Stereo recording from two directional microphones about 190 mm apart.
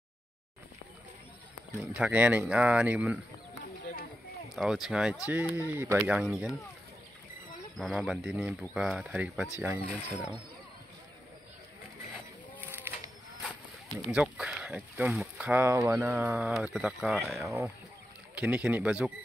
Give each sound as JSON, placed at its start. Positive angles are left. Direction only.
{"t": 1.8, "sound": "speech", "side_deg": -10}
{"t": 4.6, "sound": "speech", "side_deg": 0}
{"t": 7.7, "sound": "speech", "side_deg": 0}
{"t": 12.5, "sound": "a sound", "side_deg": -10}
{"t": 14.0, "sound": "speech", "side_deg": -5}
{"t": 17.4, "sound": "speech", "side_deg": -15}